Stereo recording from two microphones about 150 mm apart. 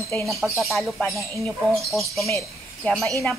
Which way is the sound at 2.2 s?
15° left (ahead or behind).